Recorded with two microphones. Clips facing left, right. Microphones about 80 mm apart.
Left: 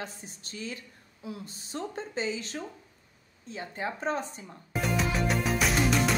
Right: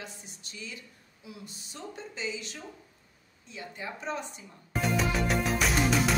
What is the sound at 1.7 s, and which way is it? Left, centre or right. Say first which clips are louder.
Speech: left 7 dB; left.